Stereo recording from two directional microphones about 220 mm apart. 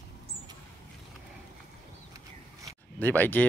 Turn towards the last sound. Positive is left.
turn(degrees=10)  # may be behind; listen again after turning